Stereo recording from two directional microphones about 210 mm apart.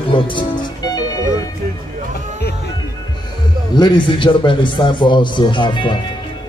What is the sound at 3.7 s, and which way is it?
A man's voice, 20° left (ahead or behind).